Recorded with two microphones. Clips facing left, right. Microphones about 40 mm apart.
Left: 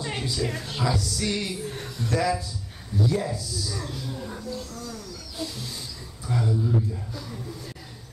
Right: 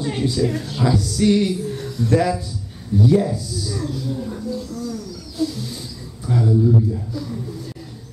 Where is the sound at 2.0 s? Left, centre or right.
Centre.